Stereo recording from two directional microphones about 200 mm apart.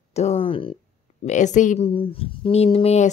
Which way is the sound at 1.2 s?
35° left (ahead or behind).